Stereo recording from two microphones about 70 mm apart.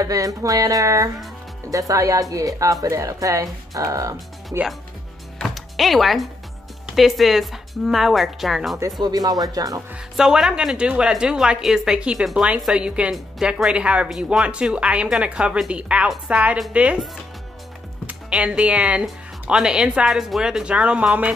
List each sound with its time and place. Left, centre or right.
0.0 s speech: right
5.4 s music: centre
7.0 s speech: centre
9.0 s speech: right
10.1 s a woman's voice: centre
18.4 s speech: centre